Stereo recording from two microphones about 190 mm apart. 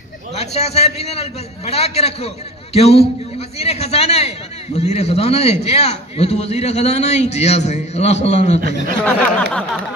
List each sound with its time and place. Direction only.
0.3 s a man's voice: 35° left (ahead or behind)
9.0 s speech: 5° left (ahead or behind)